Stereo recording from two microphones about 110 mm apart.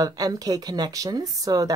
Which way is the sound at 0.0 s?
35° right (ahead or behind).